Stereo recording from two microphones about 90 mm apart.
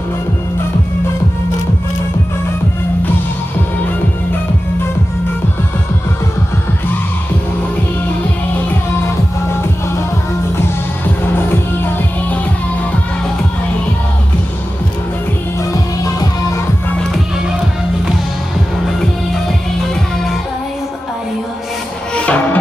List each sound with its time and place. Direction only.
8.6 s music: 25° left (ahead or behind)
11.3 s music: 25° left (ahead or behind)
16.0 s music: 40° left (ahead or behind)
22.1 s music: 15° left (ahead or behind)